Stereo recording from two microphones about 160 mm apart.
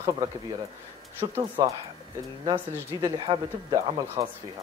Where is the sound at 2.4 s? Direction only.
30° right (ahead or behind).